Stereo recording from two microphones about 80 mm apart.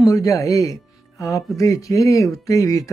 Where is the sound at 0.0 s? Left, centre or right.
Left.